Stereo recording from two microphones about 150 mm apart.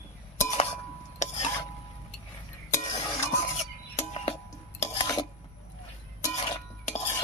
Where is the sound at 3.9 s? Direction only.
40° left (ahead or behind).